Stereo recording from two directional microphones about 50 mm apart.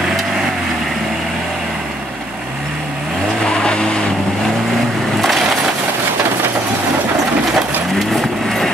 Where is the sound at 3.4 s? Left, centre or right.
Centre.